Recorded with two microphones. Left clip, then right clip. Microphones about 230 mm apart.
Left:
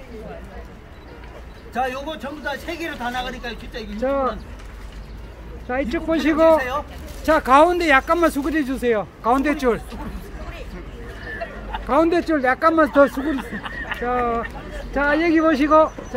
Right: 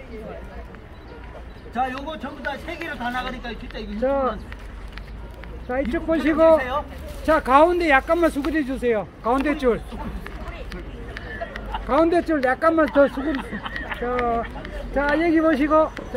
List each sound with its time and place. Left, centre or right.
1.7 s speech: left
4.0 s speech: centre
5.7 s speech: centre
11.7 s speech: left